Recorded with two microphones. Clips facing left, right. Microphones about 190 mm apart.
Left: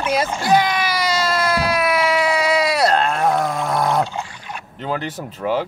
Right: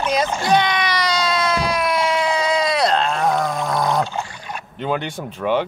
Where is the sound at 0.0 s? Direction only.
5° left (ahead or behind).